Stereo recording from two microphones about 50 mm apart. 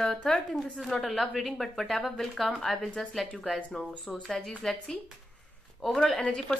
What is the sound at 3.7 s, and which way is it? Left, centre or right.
Speech, left.